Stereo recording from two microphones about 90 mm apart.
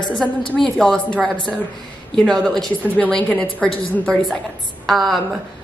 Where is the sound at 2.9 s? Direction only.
15° left (ahead or behind).